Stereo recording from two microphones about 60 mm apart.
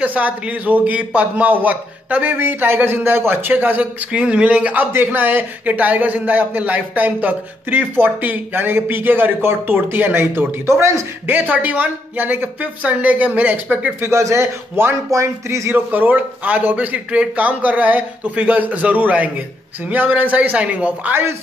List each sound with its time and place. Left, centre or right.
0.0 s a man's voice: right
4.9 s speech: right
11.2 s a man's voice: right
14.0 s a man's voice: right
15.7 s a man's voice: right
21.1 s speech: right